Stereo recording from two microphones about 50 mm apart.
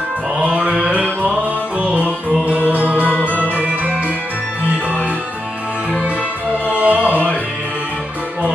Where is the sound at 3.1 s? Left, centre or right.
Left.